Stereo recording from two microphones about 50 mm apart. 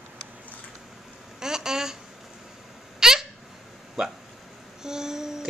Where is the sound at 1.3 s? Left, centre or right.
Centre.